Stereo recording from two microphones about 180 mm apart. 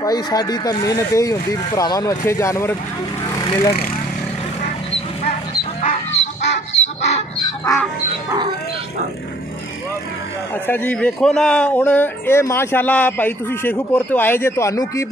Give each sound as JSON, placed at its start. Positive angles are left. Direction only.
{"t": 0.0, "sound": "speech", "side_deg": 20}
{"t": 5.8, "sound": "fowl", "side_deg": 40}
{"t": 6.7, "sound": "chicken", "side_deg": 40}
{"t": 10.7, "sound": "a man's voice", "side_deg": 10}